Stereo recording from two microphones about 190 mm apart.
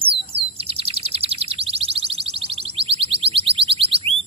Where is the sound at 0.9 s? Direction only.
30° right (ahead or behind).